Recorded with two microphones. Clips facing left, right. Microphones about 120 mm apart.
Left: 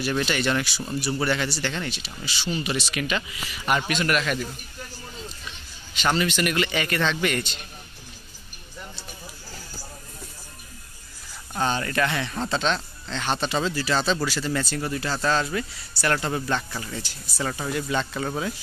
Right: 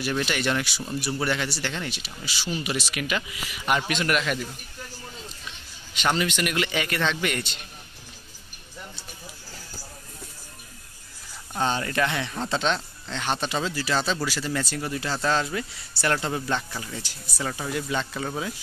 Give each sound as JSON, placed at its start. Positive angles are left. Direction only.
{"t": 0.0, "sound": "speech", "side_deg": -5}
{"t": 6.0, "sound": "speech", "side_deg": -10}
{"t": 11.6, "sound": "speech", "side_deg": -15}
{"t": 16.2, "sound": "speech", "side_deg": -10}